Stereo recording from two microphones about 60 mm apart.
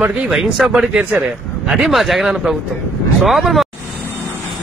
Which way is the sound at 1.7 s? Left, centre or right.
Centre.